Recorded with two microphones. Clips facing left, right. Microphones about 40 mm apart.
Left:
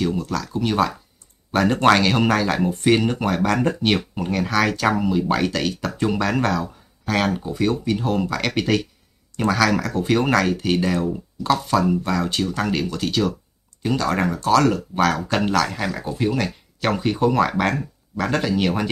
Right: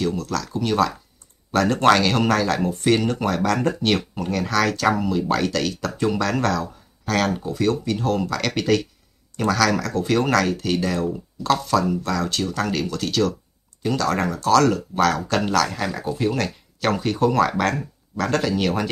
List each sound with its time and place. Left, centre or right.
0.0 s speech: centre